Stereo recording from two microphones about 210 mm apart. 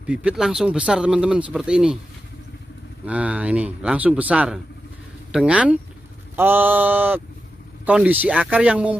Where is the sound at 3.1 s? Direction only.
5° right (ahead or behind).